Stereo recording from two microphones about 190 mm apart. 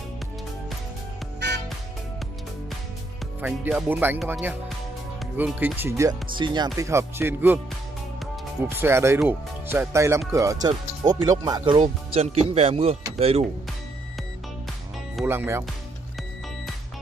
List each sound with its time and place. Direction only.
1.4 s music: 65° right (ahead or behind)
3.3 s speech: 10° right (ahead or behind)
8.6 s speech: 15° right (ahead or behind)
11.8 s speech: 30° right (ahead or behind)
15.2 s speech: 15° right (ahead or behind)